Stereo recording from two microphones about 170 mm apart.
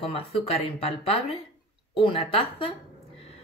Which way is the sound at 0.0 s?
35° left (ahead or behind).